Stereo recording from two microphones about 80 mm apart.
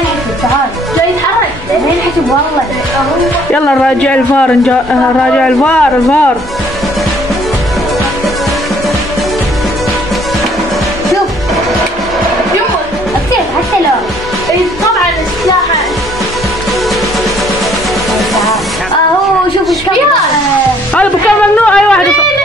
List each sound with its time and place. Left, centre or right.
3.5 s speech: centre
18.3 s music: centre
20.9 s music: centre